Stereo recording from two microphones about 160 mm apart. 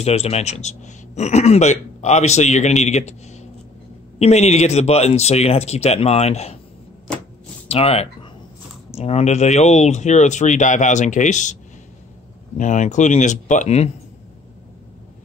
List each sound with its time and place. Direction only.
0.0 s speech: 40° left (ahead or behind)
7.6 s speech: 40° left (ahead or behind)
12.5 s speech: 50° left (ahead or behind)